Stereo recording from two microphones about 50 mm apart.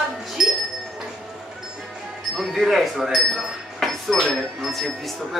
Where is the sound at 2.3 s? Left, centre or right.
Centre.